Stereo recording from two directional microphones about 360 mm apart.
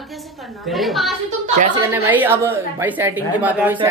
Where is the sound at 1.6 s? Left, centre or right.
Centre.